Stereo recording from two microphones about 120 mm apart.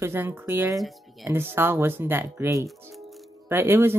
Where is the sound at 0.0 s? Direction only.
20° right (ahead or behind).